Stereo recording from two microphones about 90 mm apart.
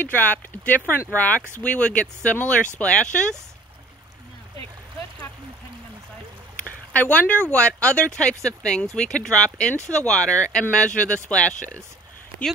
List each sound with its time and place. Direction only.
0.0 s speech: 20° left (ahead or behind)
6.9 s speech: 15° left (ahead or behind)